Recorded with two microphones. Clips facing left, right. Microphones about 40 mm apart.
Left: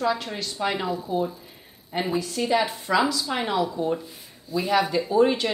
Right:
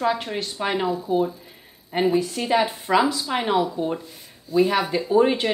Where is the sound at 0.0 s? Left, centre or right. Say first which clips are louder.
Right 2 dB; right.